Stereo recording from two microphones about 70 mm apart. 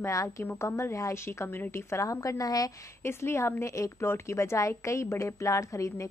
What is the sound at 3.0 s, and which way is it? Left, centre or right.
A woman's voice, left.